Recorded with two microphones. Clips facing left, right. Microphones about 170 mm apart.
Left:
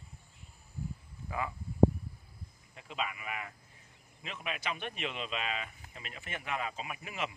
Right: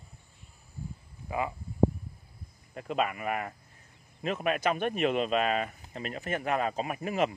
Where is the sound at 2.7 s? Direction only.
50° right (ahead or behind).